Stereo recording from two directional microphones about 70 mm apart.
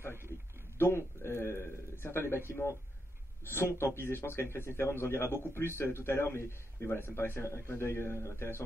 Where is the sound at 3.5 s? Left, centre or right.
Left.